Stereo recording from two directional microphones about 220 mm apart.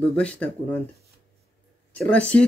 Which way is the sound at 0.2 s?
5° left (ahead or behind).